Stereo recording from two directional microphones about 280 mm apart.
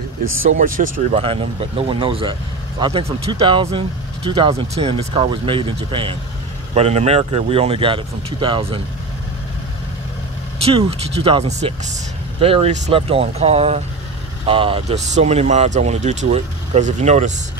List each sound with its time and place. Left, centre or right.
0.5 s speech: right
10.6 s speech: right